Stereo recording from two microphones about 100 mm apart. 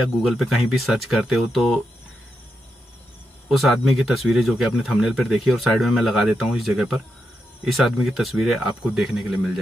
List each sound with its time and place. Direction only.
0.2 s speech: centre (ahead or behind)
3.4 s speech: centre (ahead or behind)